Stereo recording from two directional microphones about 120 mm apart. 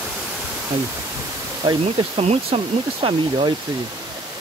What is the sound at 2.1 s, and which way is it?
Speech, 55° right (ahead or behind).